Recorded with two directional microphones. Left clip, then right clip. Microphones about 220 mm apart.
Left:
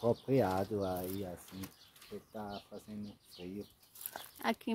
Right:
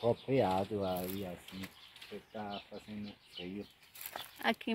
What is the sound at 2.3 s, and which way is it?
Speech, 20° left (ahead or behind).